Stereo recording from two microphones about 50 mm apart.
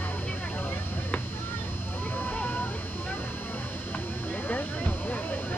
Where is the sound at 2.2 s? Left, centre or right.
Left.